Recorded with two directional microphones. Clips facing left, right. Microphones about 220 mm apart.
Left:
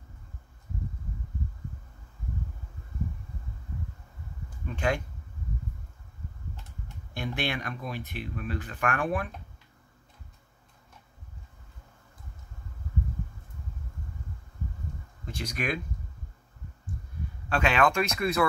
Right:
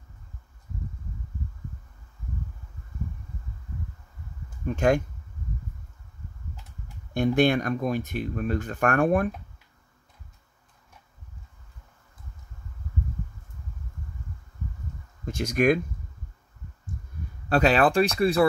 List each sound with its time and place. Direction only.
4.7 s speech: 45° right (ahead or behind)
7.2 s speech: 45° right (ahead or behind)
15.2 s speech: 45° right (ahead or behind)
17.5 s speech: 35° right (ahead or behind)